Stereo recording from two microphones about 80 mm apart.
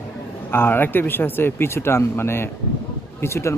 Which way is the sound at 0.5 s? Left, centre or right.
Left.